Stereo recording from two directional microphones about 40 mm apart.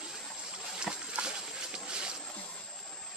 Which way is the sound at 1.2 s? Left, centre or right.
Right.